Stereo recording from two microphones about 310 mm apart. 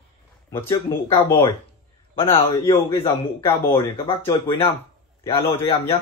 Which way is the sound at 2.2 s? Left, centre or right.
Centre.